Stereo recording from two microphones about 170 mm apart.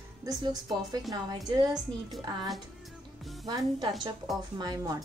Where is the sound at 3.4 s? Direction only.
20° right (ahead or behind).